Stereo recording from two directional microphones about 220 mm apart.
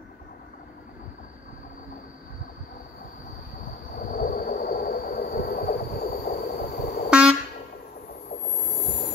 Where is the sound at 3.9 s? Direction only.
40° left (ahead or behind).